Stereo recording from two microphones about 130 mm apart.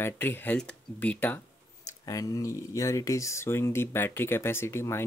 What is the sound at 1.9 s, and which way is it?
Speech, 25° left (ahead or behind).